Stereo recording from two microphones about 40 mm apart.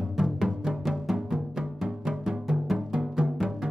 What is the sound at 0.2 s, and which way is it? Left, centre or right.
Music, centre.